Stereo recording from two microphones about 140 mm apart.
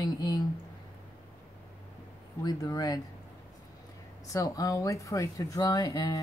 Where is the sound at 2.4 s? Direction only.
30° left (ahead or behind).